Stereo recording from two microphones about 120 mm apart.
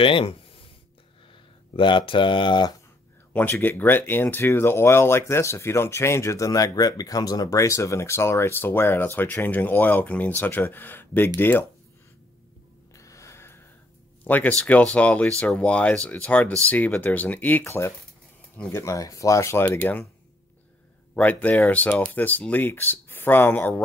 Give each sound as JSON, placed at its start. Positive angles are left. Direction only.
{"t": 0.0, "sound": "speech", "side_deg": 50}
{"t": 1.8, "sound": "speech", "side_deg": 45}
{"t": 3.3, "sound": "speech", "side_deg": 15}
{"t": 12.9, "sound": "snort", "side_deg": 25}
{"t": 14.2, "sound": "speech", "side_deg": 15}
{"t": 21.1, "sound": "speech", "side_deg": 10}